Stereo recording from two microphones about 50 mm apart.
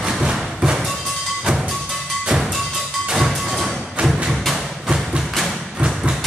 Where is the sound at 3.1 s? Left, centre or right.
Centre.